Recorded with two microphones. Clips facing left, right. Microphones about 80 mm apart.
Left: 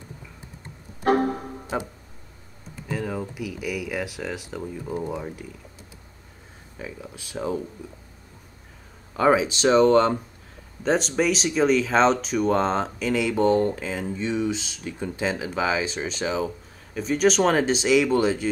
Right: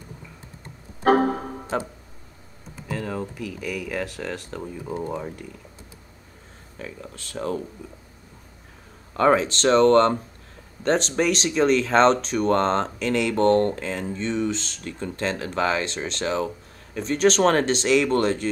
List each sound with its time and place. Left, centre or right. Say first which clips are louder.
1.2 s speech: right 2 dB; right
2.9 s speech: even; centre
6.8 s speech: even; centre
9.1 s speech: right 1 dB; centre